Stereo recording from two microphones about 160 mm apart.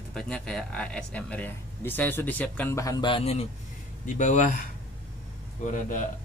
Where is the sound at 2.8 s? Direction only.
20° left (ahead or behind).